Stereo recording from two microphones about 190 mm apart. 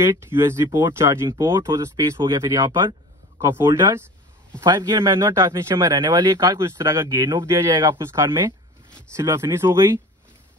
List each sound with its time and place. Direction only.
0.1 s speech: 15° right (ahead or behind)